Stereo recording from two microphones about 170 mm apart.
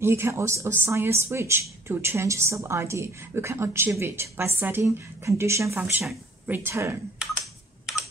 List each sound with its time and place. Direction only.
0.0 s a woman's voice: 15° right (ahead or behind)